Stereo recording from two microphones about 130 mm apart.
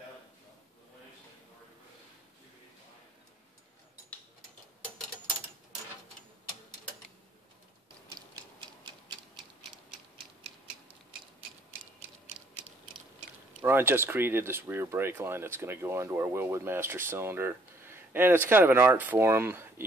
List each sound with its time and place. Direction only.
13.6 s speech: 15° right (ahead or behind)